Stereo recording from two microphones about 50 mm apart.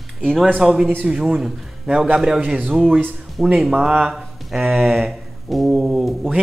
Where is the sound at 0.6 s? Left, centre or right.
Centre.